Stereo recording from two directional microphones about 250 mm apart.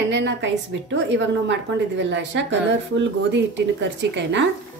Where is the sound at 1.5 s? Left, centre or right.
Right.